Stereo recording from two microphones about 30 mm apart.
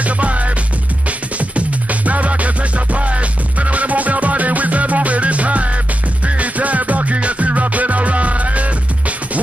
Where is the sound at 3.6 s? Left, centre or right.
Right.